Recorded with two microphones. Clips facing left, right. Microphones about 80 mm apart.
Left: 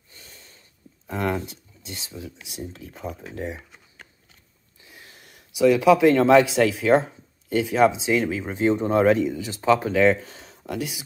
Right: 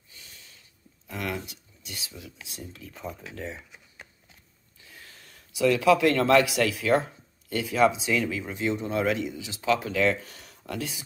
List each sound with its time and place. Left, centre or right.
1.0 s speech: left; by 3.6 s centre
4.8 s speech: left
10.6 s speech: centre